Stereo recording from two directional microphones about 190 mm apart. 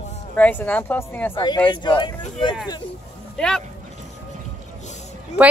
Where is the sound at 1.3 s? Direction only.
25° left (ahead or behind).